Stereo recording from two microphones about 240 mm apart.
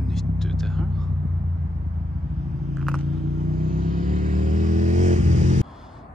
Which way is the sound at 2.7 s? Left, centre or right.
Centre.